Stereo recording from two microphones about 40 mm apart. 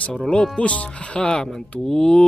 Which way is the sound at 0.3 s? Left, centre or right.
Left.